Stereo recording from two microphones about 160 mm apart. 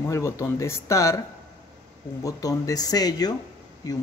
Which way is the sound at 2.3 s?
20° left (ahead or behind).